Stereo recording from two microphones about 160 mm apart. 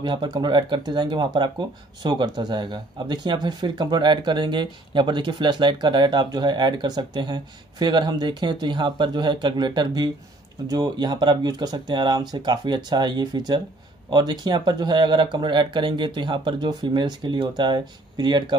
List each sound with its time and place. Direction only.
0.0 s speech: 30° right (ahead or behind)